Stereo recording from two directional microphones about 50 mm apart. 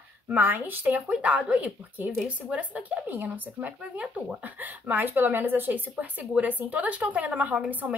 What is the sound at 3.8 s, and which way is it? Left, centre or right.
Speech, right.